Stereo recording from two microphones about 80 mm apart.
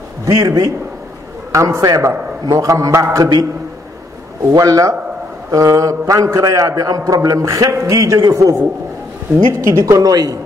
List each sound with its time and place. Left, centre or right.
0.3 s a man's voice: right
4.6 s a man's voice: right